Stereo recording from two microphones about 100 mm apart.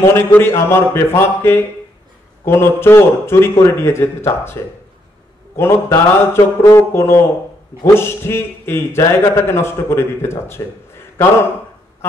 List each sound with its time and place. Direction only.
0.0 s a man's voice: 25° left (ahead or behind)
5.6 s a man's voice: 25° left (ahead or behind)
12.0 s quack: 25° left (ahead or behind)